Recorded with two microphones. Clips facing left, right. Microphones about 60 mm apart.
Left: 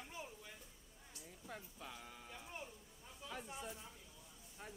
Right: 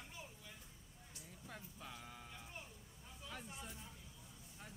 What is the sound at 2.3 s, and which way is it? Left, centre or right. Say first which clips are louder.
Music: left 3 dB; centre.